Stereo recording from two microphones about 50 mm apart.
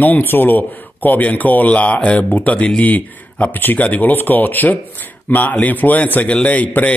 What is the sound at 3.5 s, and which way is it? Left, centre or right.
Mantra, left.